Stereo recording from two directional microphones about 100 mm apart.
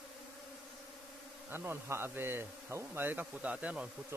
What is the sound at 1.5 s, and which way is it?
Speech, 25° right (ahead or behind).